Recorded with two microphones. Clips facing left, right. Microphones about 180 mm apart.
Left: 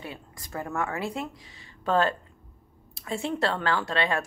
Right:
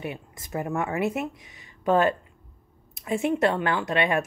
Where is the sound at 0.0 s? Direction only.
20° right (ahead or behind).